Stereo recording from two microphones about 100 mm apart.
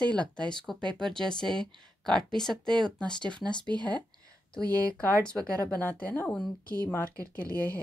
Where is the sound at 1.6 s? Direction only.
55° right (ahead or behind).